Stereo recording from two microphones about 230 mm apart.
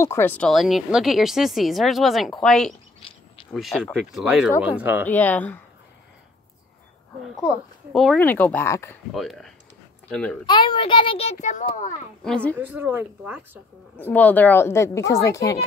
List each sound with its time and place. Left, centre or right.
0.0 s speech: centre
3.0 s a sound: left
3.5 s speech: centre
5.0 s a woman's voice: centre
7.4 s a woman's voice: centre
9.1 s speech: centre
10.4 s a child's voice: centre
12.2 s speech: centre
12.5 s speech: centre
13.9 s a woman's voice: centre